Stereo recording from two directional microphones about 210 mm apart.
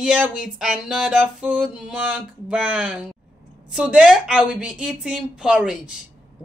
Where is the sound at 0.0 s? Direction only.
5° right (ahead or behind).